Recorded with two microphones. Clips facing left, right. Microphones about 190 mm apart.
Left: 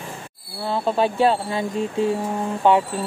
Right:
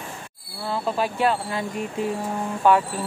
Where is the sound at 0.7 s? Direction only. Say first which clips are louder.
Left 4 dB; 25° left (ahead or behind).